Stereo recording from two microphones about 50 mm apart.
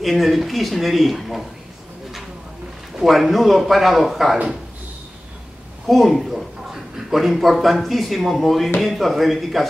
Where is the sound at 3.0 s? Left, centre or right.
Centre.